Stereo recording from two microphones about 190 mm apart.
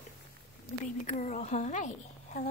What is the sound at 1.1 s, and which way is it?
A woman's voice, 40° left (ahead or behind).